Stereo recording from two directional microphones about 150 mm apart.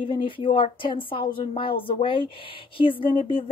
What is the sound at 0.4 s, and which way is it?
Speech, 35° left (ahead or behind).